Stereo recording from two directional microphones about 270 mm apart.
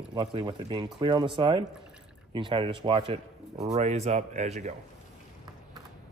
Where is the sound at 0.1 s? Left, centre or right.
Centre.